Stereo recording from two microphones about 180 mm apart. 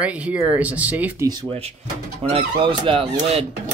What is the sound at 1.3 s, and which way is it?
Speech, 25° right (ahead or behind).